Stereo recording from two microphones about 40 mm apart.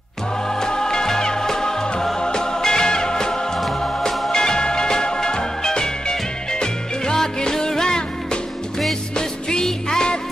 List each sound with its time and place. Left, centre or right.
0.5 s music: centre